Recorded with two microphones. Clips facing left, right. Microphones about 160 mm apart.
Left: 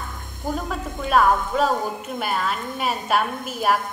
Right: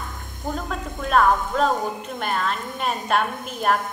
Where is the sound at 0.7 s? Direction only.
5° left (ahead or behind).